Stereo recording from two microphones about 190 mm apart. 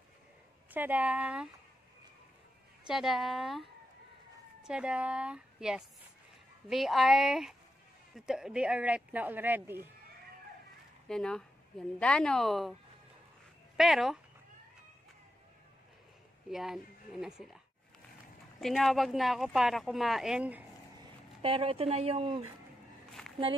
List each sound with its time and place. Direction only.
0.7 s speech: 10° right (ahead or behind)
2.9 s speech: centre (ahead or behind)
11.1 s speech: 5° left (ahead or behind)
13.7 s speech: centre (ahead or behind)
16.4 s a woman's voice: centre (ahead or behind)
18.6 s speech: centre (ahead or behind)
21.4 s speech: 30° right (ahead or behind)
23.2 s a sound: 5° left (ahead or behind)